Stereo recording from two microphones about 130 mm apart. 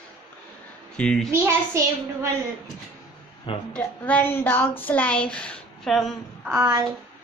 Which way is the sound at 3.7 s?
10° left (ahead or behind).